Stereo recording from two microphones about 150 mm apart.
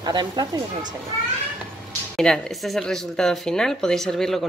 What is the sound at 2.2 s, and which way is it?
Speech, 5° left (ahead or behind).